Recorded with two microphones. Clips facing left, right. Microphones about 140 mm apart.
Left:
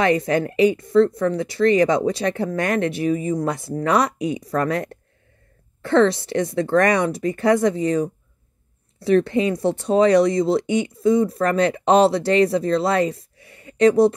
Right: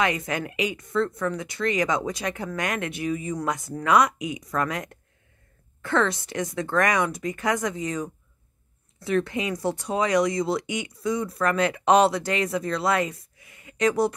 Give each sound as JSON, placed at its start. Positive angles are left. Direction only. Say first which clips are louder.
{"t": 0.0, "sound": "speech", "louder": "left 7 dB", "side_deg": 30}
{"t": 9.2, "sound": "speech", "louder": "left 7 dB", "side_deg": 25}